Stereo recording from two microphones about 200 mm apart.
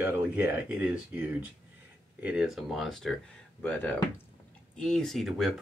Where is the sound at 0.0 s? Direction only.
10° right (ahead or behind).